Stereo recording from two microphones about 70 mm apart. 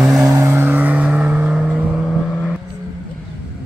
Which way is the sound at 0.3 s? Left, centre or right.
Right.